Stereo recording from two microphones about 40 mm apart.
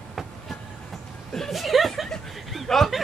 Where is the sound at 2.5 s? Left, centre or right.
Centre.